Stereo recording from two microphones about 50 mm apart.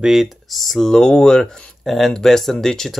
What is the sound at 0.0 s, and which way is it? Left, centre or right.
Speech, centre.